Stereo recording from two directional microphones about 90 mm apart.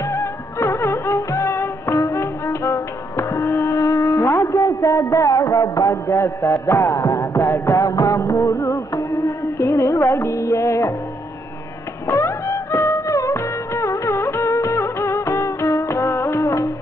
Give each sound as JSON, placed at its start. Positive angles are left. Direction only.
{"t": 0.0, "sound": "music", "side_deg": 30}
{"t": 12.1, "sound": "music", "side_deg": 35}